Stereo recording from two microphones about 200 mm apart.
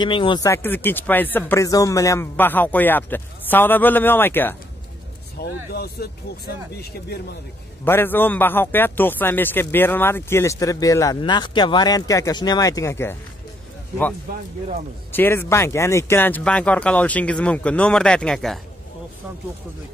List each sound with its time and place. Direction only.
0.0 s a man's voice: 25° left (ahead or behind)
5.4 s speech: 50° left (ahead or behind)
7.8 s a man's voice: 10° left (ahead or behind)
14.3 s speech: 45° right (ahead or behind)
15.1 s a man's voice: 10° left (ahead or behind)